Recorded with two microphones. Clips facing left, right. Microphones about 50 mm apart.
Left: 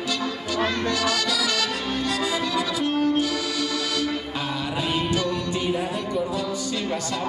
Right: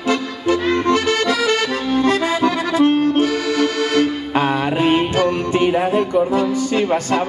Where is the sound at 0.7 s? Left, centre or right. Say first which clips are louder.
Right 8 dB; right.